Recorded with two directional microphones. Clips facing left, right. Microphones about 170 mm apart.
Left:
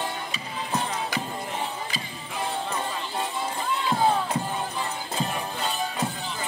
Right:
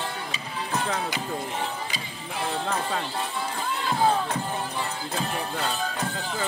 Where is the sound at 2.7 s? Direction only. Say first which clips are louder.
Right 3 dB; 80° right.